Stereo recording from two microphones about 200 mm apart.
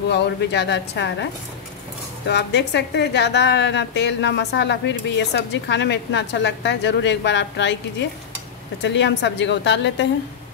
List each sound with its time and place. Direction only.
0.1 s a woman's voice: 55° left (ahead or behind)
2.2 s a woman's voice: 55° left (ahead or behind)
8.8 s a woman's voice: 60° left (ahead or behind)